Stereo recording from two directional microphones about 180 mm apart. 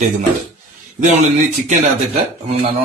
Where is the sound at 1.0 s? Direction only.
45° right (ahead or behind).